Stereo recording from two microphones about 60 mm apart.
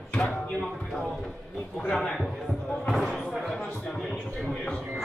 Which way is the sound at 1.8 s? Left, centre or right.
Centre.